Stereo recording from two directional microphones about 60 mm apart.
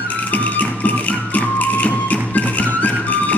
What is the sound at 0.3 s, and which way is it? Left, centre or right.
Music, left.